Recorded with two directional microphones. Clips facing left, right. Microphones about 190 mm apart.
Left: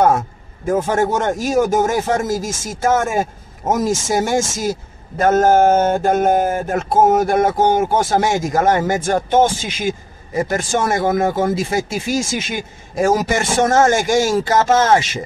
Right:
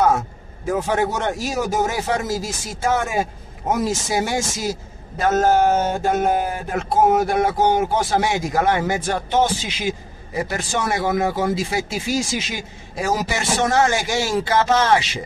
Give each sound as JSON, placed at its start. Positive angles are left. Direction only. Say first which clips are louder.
{"t": 0.7, "sound": "a man's voice", "louder": "left 4 dB", "side_deg": 50}